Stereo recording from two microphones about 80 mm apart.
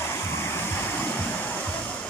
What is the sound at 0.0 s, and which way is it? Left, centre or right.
Waterfall, left.